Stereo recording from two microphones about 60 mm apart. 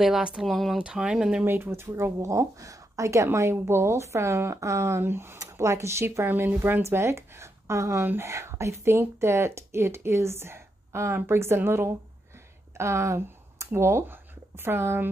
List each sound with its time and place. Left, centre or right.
0.0 s speech: centre
0.5 s speech: centre
0.7 s speech: centre
1.4 s speech: right
2.1 s a woman's voice: right
5.4 s speech: right
12.7 s a sound: right
13.7 s speech: right